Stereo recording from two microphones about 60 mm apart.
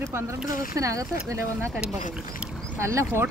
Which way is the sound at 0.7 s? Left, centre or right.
Right.